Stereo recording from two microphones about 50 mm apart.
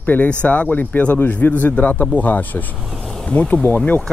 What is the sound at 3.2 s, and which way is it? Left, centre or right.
Speech, left.